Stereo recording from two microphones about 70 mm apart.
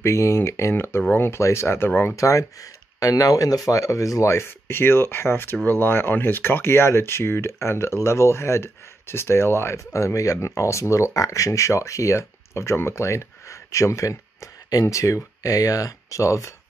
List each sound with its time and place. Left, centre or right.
0.0 s speech: left
2.1 s speech: left